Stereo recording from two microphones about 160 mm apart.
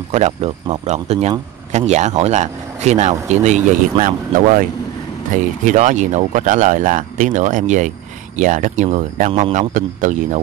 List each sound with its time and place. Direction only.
0.1 s speech: 40° right (ahead or behind)
5.7 s speech: 50° right (ahead or behind)